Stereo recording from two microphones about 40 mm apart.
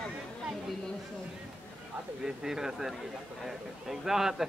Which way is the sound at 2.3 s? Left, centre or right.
Centre.